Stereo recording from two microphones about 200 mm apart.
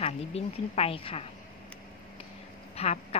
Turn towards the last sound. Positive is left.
turn(degrees=30)  # may be behind; listen again after turning